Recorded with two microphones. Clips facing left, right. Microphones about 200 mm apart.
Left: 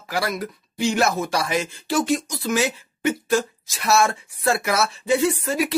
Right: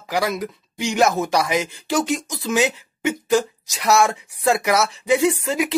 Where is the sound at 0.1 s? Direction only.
15° right (ahead or behind).